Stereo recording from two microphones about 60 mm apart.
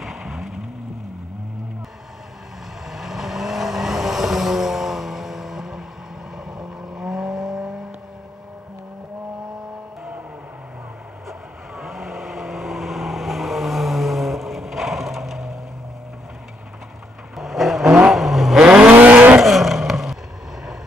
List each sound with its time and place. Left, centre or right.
0.0 s vehicle: centre
2.9 s vehicle: centre
11.2 s vehicle: centre
17.4 s vehicle: centre
17.8 s vehicle: centre
18.1 s vehicle: centre
18.6 s vehicle: centre
19.4 s vehicle: centre